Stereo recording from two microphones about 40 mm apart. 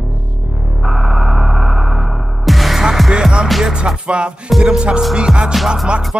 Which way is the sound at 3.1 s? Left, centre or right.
Right.